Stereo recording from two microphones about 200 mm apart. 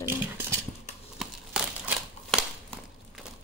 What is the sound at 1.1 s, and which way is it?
Crumpling, centre (ahead or behind).